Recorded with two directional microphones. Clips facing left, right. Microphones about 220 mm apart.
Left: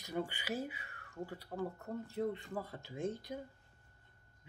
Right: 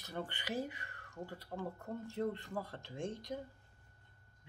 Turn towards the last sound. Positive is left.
turn(degrees=5)  # may be behind; listen again after turning